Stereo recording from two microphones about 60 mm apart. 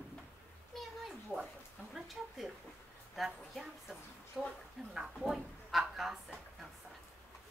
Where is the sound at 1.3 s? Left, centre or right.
Left.